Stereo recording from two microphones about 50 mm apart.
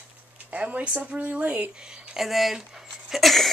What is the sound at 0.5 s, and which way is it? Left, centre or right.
Speech, right.